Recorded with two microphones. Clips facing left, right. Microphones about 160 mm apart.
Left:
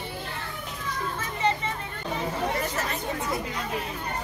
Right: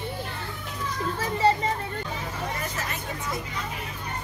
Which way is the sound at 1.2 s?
35° right (ahead or behind).